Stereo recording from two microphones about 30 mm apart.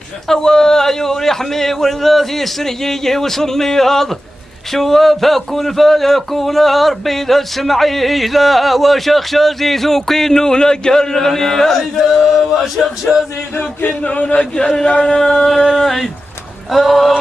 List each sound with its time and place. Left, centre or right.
0.3 s a man's voice: centre
12.3 s male singing: centre
15.0 s singing: left
15.6 s male singing: centre